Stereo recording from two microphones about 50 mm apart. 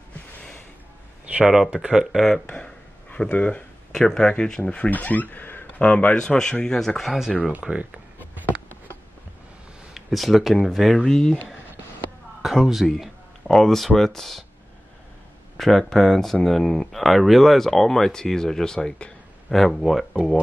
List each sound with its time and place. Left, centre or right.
1.7 s speech: right
2.1 s speech: centre
2.4 s a sound: left
4.1 s a man's voice: centre
4.9 s speech: left
5.8 s a man's voice: left
7.1 s speech: centre
7.7 s speech: right
9.9 s speech: centre
12.4 s speech: centre
13.5 s speech: centre
15.5 s speech: centre
18.8 s a man's voice: left
19.5 s speech: centre